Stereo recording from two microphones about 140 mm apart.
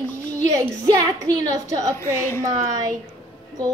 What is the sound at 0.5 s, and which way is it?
A woman's voice, 25° right (ahead or behind).